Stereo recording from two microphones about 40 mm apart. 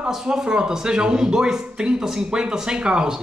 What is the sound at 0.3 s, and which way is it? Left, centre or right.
Speech, centre.